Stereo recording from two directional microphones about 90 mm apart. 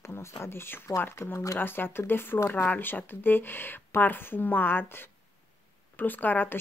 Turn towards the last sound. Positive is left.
turn(degrees=20)  # may be behind; listen again after turning